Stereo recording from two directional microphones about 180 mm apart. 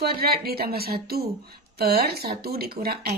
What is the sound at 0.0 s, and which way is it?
Speech, 60° right (ahead or behind).